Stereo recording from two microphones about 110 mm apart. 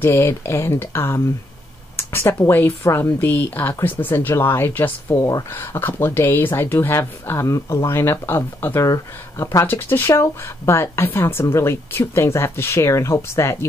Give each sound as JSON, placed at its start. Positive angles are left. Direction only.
{"t": 0.0, "sound": "speech", "side_deg": 25}
{"t": 5.1, "sound": "speech", "side_deg": 30}
{"t": 5.5, "sound": "speech", "side_deg": 20}